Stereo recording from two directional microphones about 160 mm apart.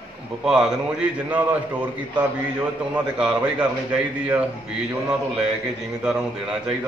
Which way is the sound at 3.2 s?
5° right (ahead or behind).